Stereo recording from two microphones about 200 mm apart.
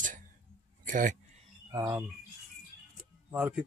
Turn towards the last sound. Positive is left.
turn(degrees=-5)  # may be behind; listen again after turning